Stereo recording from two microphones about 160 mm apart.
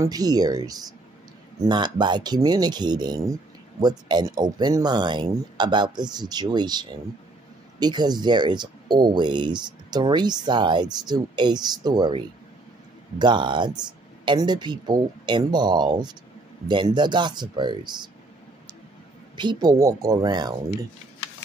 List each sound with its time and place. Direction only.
0.0 s speech: 25° right (ahead or behind)
13.2 s speech: 30° right (ahead or behind)
19.3 s speech: 25° right (ahead or behind)